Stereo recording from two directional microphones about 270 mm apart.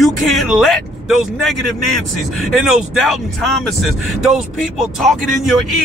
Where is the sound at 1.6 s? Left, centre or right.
Left.